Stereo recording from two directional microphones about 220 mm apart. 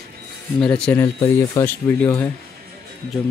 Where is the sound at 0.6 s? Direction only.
5° left (ahead or behind).